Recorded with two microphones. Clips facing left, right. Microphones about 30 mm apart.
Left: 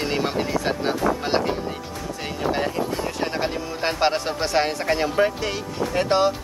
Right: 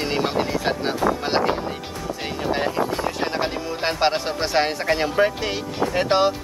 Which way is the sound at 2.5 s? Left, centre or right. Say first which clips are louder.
Right 2 dB; centre.